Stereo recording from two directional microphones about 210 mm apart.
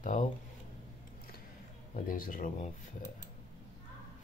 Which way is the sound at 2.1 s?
40° left (ahead or behind).